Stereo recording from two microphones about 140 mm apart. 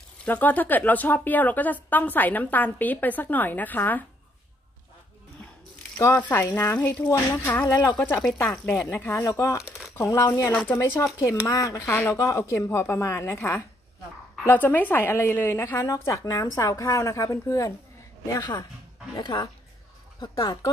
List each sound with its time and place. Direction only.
0.2 s a woman's voice: 15° left (ahead or behind)
6.1 s a woman's voice: 15° left (ahead or behind)
7.6 s a woman's voice: 25° left (ahead or behind)